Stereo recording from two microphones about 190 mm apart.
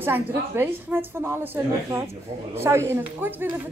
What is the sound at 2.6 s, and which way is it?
Speech, 15° right (ahead or behind).